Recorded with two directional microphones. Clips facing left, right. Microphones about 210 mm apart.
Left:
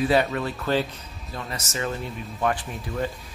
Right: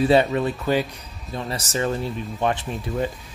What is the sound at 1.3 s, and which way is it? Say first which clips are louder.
Speech: right 5 dB; 25° right (ahead or behind).